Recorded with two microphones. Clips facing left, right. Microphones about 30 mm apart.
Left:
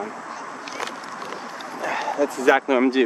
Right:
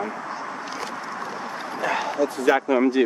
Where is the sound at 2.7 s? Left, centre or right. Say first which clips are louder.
Left 1 dB; left.